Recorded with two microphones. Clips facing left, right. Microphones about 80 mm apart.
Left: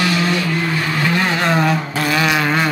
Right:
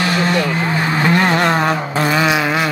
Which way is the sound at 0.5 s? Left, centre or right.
Right.